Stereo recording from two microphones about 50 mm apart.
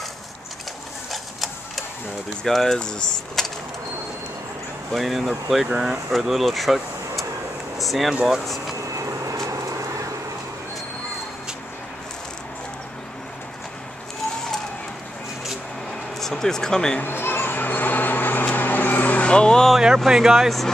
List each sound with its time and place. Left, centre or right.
1.1 s sewing machine: centre
2.4 s speech: centre
4.9 s speech: centre
5.7 s speech: centre
6.1 s speech: centre
8.8 s vehicle: right
16.2 s speech: centre
17.0 s a sound: left
19.2 s speech: centre
20.1 s speech: centre
20.4 s speech: centre